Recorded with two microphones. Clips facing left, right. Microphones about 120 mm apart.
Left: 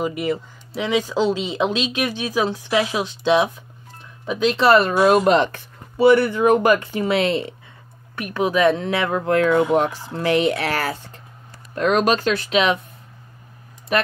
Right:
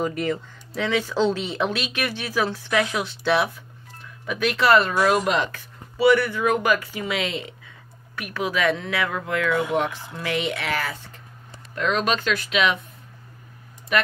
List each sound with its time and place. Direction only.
0.0 s speech: 10° left (ahead or behind); by 7.5 s 35° left (ahead or behind)
8.2 s speech: 25° left (ahead or behind)
13.9 s speech: 35° left (ahead or behind)